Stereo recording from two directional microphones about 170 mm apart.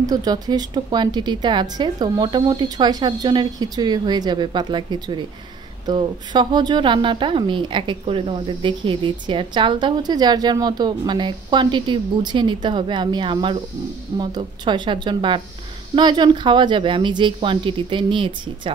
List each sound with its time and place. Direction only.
0.0 s a woman's voice: 25° right (ahead or behind)